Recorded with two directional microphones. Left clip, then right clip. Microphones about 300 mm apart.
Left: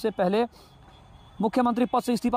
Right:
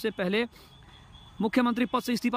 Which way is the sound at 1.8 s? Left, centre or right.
Centre.